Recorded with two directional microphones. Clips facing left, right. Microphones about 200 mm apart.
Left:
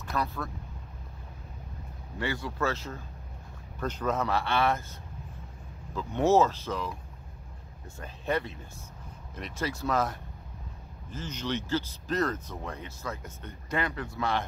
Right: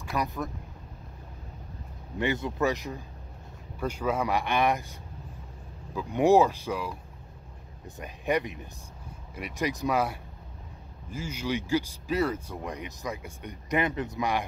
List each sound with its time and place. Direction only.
0.0 s speech: 15° right (ahead or behind)
2.1 s speech: 20° right (ahead or behind)
5.9 s speech: 15° right (ahead or behind)
8.0 s speech: 15° right (ahead or behind)